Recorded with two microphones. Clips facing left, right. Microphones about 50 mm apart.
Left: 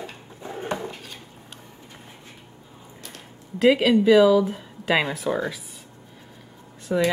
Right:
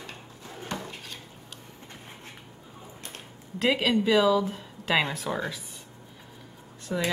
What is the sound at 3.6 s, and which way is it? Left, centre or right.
Speech, centre.